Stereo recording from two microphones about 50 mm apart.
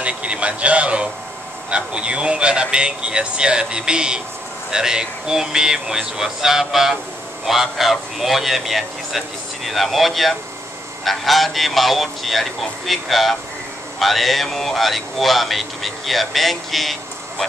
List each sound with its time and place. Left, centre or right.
0.0 s speech: right; by 16.9 s centre